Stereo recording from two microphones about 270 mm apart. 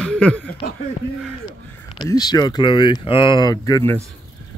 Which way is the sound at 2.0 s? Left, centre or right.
Centre.